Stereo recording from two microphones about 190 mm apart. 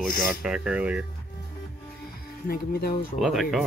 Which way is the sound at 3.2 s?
Centre (ahead or behind).